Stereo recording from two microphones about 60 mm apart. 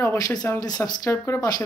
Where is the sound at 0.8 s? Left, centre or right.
Left.